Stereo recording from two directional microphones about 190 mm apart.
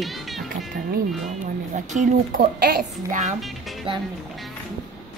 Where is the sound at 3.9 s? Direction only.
30° right (ahead or behind).